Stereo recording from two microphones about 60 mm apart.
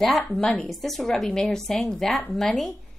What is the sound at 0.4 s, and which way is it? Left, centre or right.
Speech, left.